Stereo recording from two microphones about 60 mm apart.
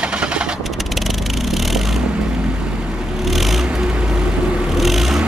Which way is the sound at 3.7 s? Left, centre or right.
Centre.